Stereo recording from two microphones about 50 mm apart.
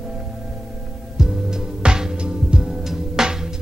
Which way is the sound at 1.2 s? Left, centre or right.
Centre.